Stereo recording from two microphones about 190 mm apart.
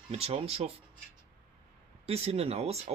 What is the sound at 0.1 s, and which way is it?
Speech, 30° right (ahead or behind).